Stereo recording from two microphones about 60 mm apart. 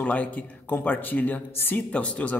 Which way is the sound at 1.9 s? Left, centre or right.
Left.